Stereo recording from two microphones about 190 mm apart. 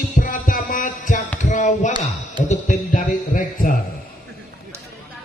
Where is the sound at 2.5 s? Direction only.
40° left (ahead or behind).